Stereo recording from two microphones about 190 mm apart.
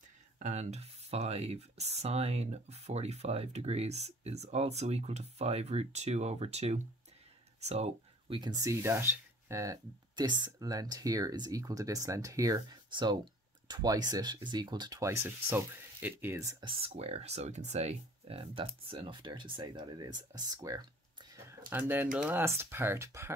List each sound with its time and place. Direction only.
0.4 s speech: 35° right (ahead or behind)
8.4 s speech: 20° right (ahead or behind)
16.6 s speech: 30° right (ahead or behind)